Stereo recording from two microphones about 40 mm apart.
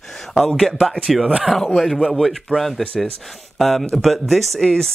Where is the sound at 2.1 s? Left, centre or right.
Centre.